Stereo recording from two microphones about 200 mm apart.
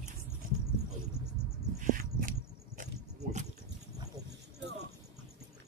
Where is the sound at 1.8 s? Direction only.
45° right (ahead or behind).